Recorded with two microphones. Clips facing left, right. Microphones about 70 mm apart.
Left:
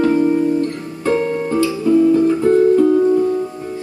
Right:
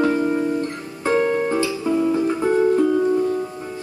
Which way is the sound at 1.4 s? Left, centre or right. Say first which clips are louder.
Left 5 dB; right.